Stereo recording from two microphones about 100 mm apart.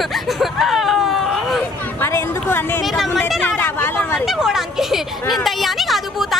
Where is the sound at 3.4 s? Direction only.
20° left (ahead or behind).